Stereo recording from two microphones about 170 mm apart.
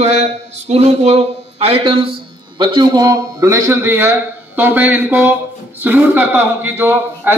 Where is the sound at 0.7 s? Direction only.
40° right (ahead or behind).